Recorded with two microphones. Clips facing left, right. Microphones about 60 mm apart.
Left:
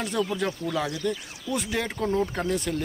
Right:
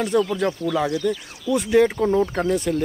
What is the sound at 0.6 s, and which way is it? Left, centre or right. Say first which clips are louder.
Speech: right 6 dB; right.